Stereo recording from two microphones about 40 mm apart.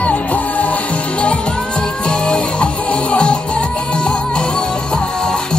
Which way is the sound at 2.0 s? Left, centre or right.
Left.